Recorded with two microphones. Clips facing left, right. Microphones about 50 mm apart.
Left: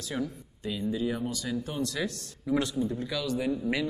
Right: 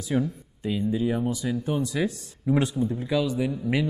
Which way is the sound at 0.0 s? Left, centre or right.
Centre.